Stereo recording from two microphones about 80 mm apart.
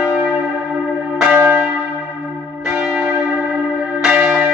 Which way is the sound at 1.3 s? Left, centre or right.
Right.